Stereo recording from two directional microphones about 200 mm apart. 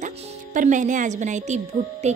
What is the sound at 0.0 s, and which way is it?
A woman's voice, 35° right (ahead or behind).